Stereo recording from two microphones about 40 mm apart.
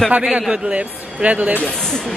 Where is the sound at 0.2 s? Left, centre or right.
Centre.